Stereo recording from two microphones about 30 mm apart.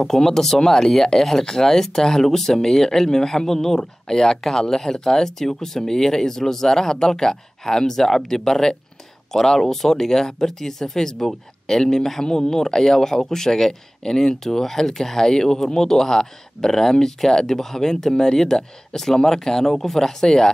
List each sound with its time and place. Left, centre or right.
0.0 s speech: centre